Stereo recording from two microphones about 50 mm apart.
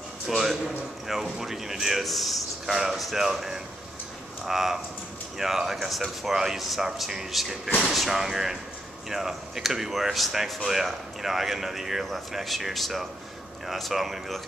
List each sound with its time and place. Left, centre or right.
1.0 s a man's voice: centre